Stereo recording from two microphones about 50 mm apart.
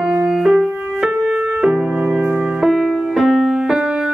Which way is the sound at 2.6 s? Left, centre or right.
Centre.